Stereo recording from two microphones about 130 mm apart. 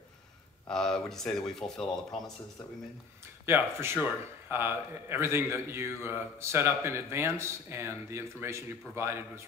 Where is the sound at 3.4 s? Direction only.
20° right (ahead or behind).